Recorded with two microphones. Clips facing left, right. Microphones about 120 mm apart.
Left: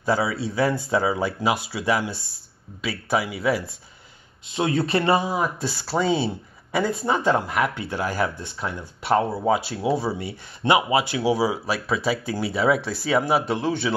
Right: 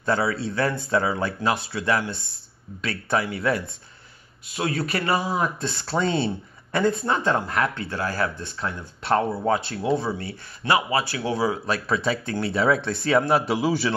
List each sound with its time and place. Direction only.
0.0 s speech: 10° left (ahead or behind)
4.5 s speech: 25° left (ahead or behind)
5.3 s speech: 10° left (ahead or behind)